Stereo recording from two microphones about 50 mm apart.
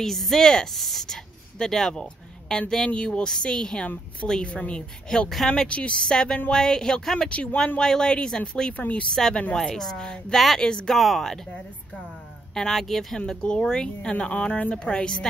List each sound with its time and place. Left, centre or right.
0.0 s speech: centre; by 9.6 s left
9.6 s speech: centre
10.9 s speech: centre
12.5 s speech: centre